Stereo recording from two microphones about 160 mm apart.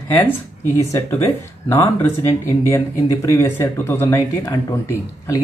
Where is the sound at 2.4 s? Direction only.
15° left (ahead or behind).